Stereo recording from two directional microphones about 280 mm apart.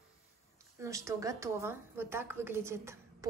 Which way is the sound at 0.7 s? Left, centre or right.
Centre.